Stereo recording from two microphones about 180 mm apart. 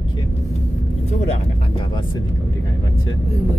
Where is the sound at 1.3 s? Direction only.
25° left (ahead or behind).